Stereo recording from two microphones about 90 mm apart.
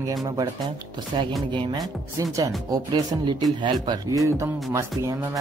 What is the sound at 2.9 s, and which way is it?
Speech, 55° right (ahead or behind).